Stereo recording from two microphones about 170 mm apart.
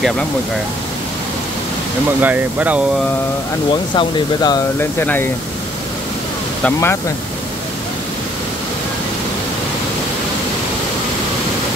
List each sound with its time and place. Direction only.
2.2 s speech: 10° right (ahead or behind)
3.9 s speech: 25° left (ahead or behind)
4.7 s speech: 10° left (ahead or behind)
6.6 s speech: 15° left (ahead or behind)